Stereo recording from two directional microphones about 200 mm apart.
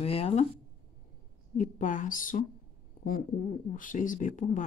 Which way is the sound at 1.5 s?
40° left (ahead or behind).